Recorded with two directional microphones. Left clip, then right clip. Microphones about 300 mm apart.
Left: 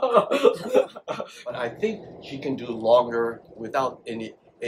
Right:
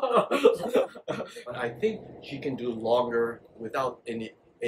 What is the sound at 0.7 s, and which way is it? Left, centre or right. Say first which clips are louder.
Speech: left 4 dB; centre.